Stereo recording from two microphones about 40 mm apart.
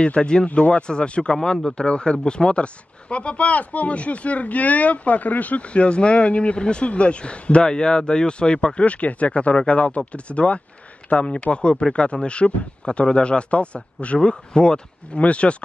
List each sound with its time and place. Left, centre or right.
0.0 s speech: left